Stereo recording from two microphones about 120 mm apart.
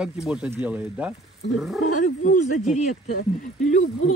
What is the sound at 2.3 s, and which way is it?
Speech, 85° left.